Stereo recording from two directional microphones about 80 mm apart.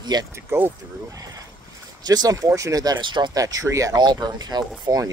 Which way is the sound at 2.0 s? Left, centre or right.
Right.